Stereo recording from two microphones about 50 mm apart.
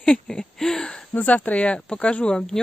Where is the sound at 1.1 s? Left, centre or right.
Left; by 2.5 s centre.